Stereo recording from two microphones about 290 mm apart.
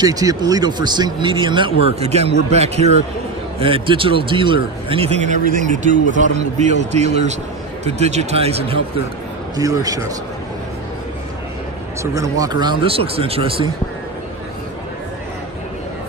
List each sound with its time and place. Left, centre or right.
0.0 s a man's voice: centre
12.0 s speech: centre